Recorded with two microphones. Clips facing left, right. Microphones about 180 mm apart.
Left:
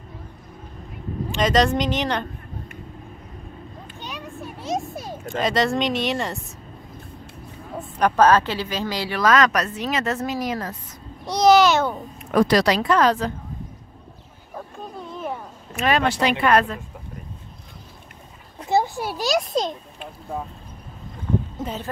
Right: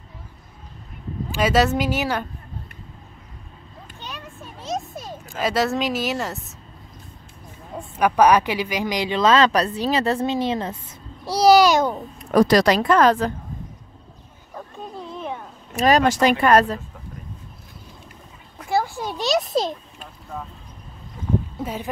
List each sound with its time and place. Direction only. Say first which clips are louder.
1.3 s a woman's voice: even; 5° right (ahead or behind)
4.0 s a sound: left 3 dB; 15° left (ahead or behind)
5.2 s speech: even; 5° right (ahead or behind)
7.8 s a child's voice: right 1 dB; 10° right (ahead or behind); by 11.6 s 35° right (ahead or behind)
11.6 s a woman's voice: right 1 dB; 10° right (ahead or behind)
12.2 s speech: right 2 dB; 40° right (ahead or behind)
14.5 s a sound: even; centre (ahead or behind)
15.7 s speech: right 4 dB; 40° right (ahead or behind)
18.6 s a sound: left 2 dB; 20° left (ahead or behind)
19.0 s speech: right 1 dB; centre (ahead or behind)
21.6 s a woman's voice: right 1 dB; 10° right (ahead or behind)